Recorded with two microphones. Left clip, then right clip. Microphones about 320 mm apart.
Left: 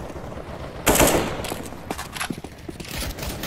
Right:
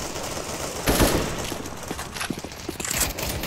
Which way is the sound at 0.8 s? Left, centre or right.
Centre.